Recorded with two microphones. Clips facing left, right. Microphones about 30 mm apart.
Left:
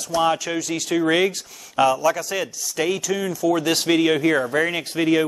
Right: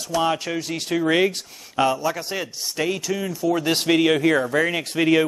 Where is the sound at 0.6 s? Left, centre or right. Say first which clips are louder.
Left 2 dB; left.